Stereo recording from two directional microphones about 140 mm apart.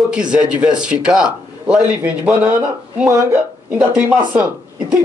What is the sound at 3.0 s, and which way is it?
Speech, 20° right (ahead or behind).